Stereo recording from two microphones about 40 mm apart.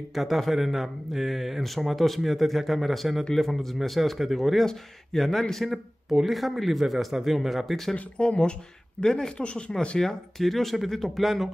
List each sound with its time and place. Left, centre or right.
0.1 s a man's voice: centre
7.9 s speech: left
9.4 s speech: left
10.4 s a man's voice: centre